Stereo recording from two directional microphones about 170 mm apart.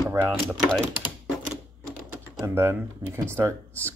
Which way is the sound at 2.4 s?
15° right (ahead or behind).